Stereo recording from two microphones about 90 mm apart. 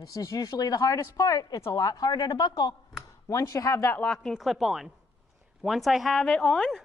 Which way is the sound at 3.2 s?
35° left (ahead or behind).